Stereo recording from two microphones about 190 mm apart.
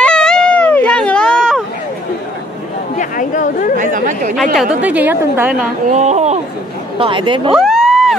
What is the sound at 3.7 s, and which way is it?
Speech, 45° right (ahead or behind).